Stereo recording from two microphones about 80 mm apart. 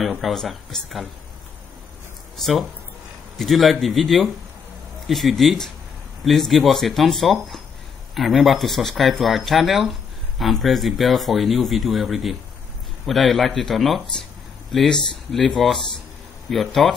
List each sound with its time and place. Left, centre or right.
0.2 s speech: centre
2.3 s speech: centre